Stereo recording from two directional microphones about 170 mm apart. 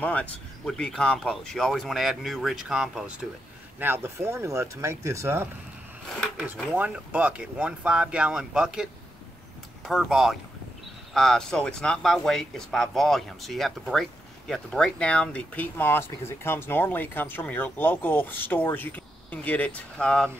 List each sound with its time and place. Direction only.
0.0 s speech: 10° left (ahead or behind); by 5.5 s 15° right (ahead or behind)
6.7 s speech: 10° right (ahead or behind)
9.8 s speech: centre (ahead or behind)